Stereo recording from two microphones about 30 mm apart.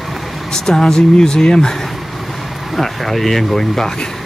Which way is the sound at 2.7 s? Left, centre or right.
Centre.